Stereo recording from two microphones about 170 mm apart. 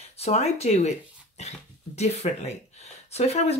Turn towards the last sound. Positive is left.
turn(degrees=40)  # may be behind; listen again after turning